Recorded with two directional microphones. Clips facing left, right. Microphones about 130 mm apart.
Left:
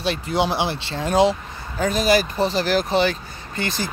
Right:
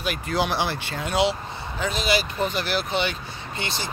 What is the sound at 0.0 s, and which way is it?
Speech, 30° left (ahead or behind).